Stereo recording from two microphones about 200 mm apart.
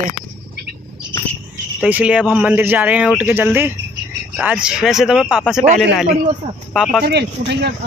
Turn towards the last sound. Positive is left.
turn(degrees=-55)  # may be behind; listen again after turning